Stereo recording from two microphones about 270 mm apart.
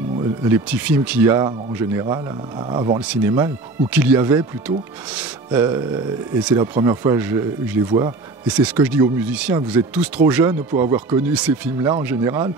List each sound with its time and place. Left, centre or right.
0.4 s speech: centre